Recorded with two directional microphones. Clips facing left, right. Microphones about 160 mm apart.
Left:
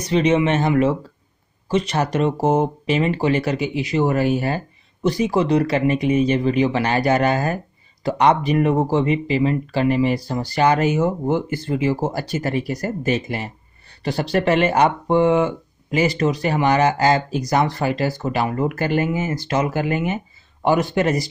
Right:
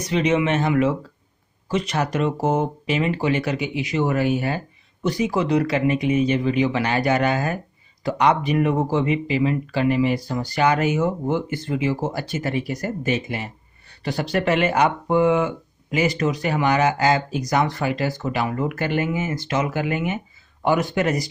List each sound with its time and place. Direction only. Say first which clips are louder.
0.1 s speech: left 3 dB; 30° left (ahead or behind)